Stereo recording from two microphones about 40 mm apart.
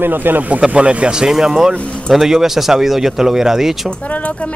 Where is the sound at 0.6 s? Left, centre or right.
Right.